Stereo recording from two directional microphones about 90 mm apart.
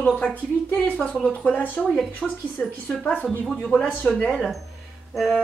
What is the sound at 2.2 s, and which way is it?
Music, 5° left (ahead or behind).